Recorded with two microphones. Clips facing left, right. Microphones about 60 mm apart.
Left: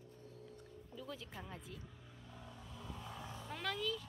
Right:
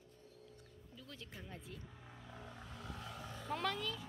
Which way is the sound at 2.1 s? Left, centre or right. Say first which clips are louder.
Right 4 dB; right.